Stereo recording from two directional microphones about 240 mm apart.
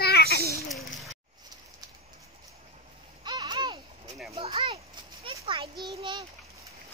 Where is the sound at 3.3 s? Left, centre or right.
Centre.